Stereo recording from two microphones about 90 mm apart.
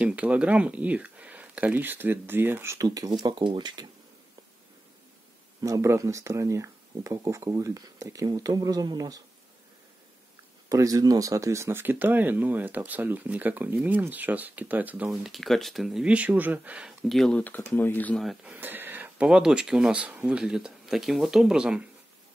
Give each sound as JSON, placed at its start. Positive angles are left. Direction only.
{"t": 0.0, "sound": "speech", "side_deg": -15}
{"t": 2.8, "sound": "speech", "side_deg": -40}
{"t": 5.6, "sound": "speech", "side_deg": -35}
{"t": 10.7, "sound": "speech", "side_deg": -40}
{"t": 15.0, "sound": "speech", "side_deg": 0}
{"t": 16.0, "sound": "speech", "side_deg": -15}
{"t": 17.1, "sound": "speech", "side_deg": 5}
{"t": 17.4, "sound": "speech", "side_deg": 20}
{"t": 18.1, "sound": "speech", "side_deg": 0}
{"t": 18.4, "sound": "a sound", "side_deg": -20}
{"t": 19.2, "sound": "speech", "side_deg": -10}